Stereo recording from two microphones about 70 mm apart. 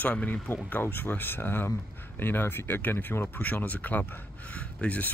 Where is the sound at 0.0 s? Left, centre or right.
Left.